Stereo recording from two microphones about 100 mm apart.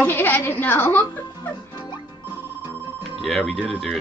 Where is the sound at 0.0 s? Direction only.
20° left (ahead or behind).